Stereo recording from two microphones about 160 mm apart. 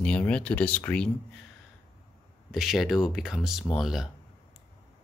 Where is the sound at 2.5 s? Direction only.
Centre (ahead or behind).